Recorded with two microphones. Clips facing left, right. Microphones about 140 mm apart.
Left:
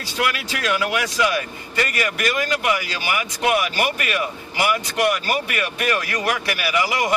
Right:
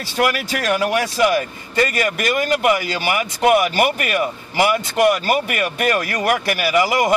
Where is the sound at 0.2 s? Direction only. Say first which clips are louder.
Right 4 dB; 45° right (ahead or behind).